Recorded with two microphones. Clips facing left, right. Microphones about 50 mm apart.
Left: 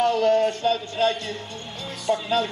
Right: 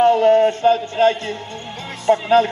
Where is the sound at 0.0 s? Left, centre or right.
Right.